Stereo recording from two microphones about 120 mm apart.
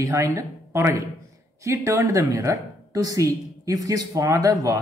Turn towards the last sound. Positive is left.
turn(degrees=-30)  # may be behind; listen again after turning